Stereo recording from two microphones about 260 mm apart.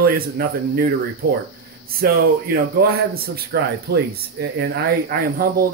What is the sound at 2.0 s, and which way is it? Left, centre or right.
Speech, right.